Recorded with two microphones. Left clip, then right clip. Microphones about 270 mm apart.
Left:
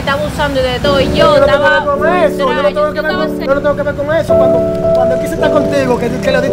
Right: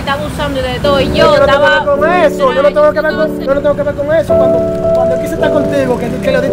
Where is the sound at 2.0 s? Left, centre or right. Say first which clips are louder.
Right 2 dB; right.